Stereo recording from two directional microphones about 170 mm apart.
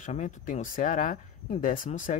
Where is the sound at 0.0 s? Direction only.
45° left (ahead or behind).